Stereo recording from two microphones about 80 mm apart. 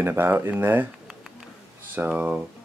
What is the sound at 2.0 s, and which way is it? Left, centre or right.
Speech, centre.